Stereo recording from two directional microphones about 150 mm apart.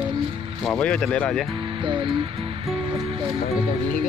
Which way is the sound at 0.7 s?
5° left (ahead or behind).